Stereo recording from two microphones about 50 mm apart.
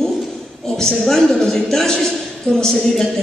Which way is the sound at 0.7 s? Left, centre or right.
Centre.